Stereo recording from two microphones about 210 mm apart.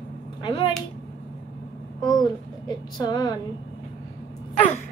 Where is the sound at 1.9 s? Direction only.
20° left (ahead or behind).